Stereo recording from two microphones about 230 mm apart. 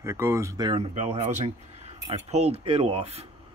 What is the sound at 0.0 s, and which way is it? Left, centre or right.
Speech, centre.